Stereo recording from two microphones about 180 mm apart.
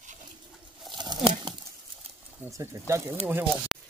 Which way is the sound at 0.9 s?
25° right (ahead or behind).